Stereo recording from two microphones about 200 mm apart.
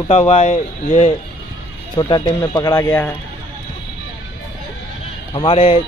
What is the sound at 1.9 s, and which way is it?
Speech, 20° left (ahead or behind).